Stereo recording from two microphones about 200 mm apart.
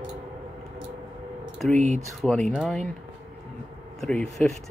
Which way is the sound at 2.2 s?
Centre (ahead or behind).